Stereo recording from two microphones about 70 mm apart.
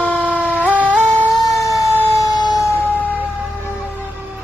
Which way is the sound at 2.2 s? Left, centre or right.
Left.